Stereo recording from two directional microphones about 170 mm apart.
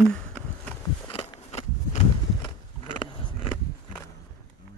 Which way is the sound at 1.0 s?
35° left (ahead or behind).